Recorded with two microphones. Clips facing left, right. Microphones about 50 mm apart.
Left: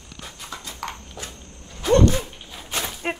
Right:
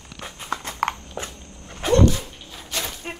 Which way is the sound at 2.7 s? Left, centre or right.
Left.